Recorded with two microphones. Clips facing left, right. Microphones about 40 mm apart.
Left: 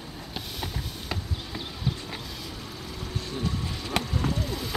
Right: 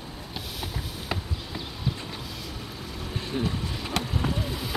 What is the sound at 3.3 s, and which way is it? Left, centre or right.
Vehicle, right.